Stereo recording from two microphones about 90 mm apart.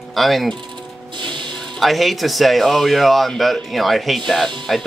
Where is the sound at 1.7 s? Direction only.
Centre (ahead or behind).